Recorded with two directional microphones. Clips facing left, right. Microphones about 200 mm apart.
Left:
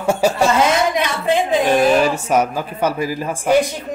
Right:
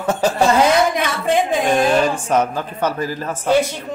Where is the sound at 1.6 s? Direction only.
5° left (ahead or behind).